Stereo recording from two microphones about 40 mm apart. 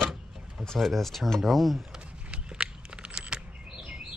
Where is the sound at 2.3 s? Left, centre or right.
Right.